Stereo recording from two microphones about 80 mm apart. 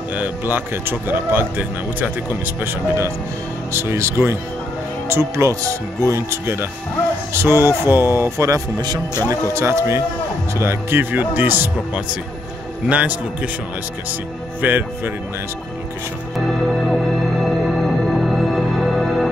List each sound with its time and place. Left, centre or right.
0.1 s a man's voice: right
14.6 s speech: right
16.3 s music: centre